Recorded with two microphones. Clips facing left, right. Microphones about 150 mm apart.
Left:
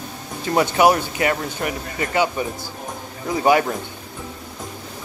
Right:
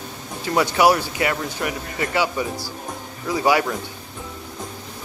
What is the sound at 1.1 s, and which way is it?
Speech, 35° left (ahead or behind).